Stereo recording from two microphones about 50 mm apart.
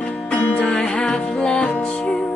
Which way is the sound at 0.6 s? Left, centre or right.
Centre.